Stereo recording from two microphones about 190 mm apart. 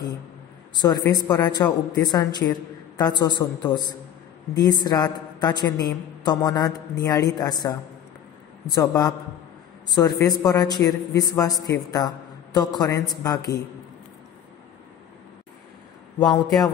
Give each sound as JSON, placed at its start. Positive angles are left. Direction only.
{"t": 0.7, "sound": "a woman's voice", "side_deg": 20}